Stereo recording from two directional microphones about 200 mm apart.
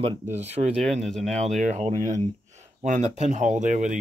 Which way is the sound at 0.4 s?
35° right (ahead or behind).